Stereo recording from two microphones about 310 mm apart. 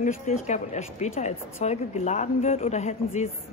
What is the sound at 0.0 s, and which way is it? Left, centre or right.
A woman's voice, left.